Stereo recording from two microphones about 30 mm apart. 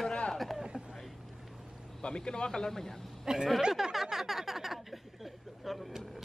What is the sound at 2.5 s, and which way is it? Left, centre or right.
Speech, centre.